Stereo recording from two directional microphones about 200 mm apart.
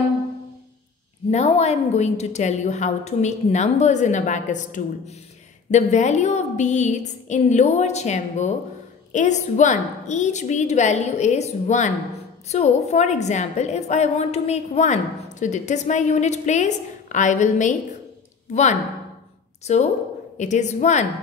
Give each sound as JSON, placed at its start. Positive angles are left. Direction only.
{"t": 1.3, "sound": "a woman's voice", "side_deg": 35}